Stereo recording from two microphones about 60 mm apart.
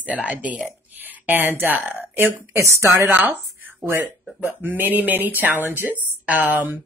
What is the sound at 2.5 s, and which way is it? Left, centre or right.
Speech, right.